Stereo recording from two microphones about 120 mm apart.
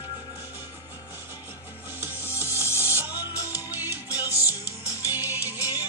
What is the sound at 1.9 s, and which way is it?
Music, 15° right (ahead or behind).